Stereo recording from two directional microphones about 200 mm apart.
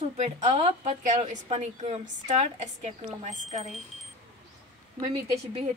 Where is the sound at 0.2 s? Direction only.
35° right (ahead or behind).